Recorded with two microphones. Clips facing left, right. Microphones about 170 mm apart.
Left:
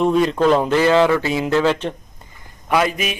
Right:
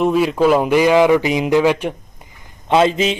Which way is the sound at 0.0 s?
5° right (ahead or behind).